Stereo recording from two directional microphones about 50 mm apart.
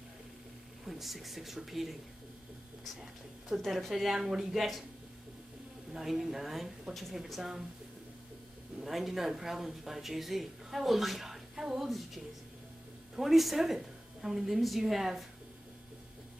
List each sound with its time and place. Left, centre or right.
0.8 s speech: centre
3.4 s speech: centre
5.9 s speech: centre
8.8 s a woman's voice: centre